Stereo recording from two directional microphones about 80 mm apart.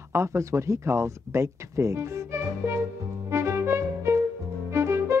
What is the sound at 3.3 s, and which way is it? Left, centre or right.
Music, right.